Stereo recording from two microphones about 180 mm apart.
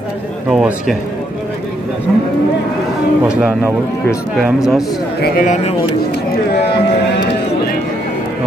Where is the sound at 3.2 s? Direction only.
5° right (ahead or behind).